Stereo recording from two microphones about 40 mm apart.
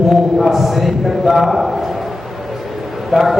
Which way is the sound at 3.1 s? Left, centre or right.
Centre.